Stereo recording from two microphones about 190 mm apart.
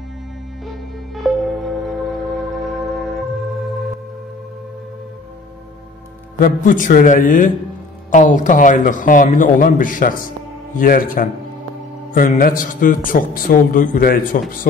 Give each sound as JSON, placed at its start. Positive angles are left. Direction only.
{"t": 1.1, "sound": "music", "side_deg": 0}
{"t": 6.4, "sound": "speech", "side_deg": 45}